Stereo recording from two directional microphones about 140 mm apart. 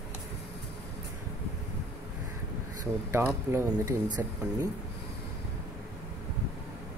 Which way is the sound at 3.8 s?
30° right (ahead or behind).